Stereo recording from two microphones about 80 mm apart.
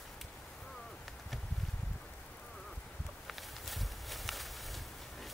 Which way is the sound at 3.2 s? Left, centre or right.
Centre.